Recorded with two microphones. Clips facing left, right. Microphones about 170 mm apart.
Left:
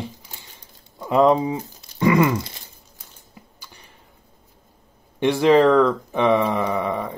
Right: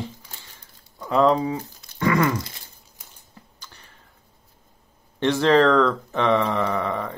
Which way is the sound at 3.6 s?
15° left (ahead or behind).